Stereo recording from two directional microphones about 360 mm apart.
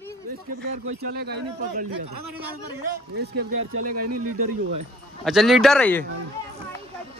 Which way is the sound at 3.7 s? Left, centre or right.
Right.